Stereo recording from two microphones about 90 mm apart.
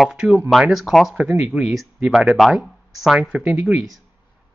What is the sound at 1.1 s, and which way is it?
Speech, 15° right (ahead or behind).